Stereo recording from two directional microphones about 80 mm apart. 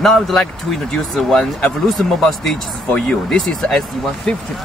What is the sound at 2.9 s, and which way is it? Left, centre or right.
Speech, centre.